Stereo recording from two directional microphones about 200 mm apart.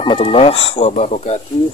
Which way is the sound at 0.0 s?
25° left (ahead or behind).